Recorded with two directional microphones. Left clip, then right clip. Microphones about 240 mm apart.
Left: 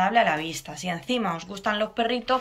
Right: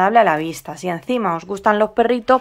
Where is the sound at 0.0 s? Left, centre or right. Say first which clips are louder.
Right 8 dB; right.